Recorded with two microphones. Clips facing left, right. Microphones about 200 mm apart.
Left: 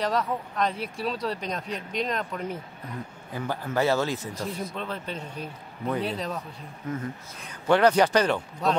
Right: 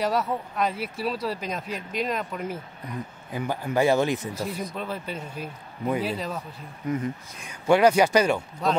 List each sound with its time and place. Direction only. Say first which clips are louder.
0.0 s a man's voice: right 1 dB; 5° right (ahead or behind)
4.3 s a man's voice: right 2 dB; 5° right (ahead or behind)
6.9 s a man's voice: right 5 dB; 15° right (ahead or behind)